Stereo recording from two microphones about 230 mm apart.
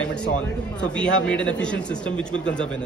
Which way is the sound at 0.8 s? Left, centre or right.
Centre.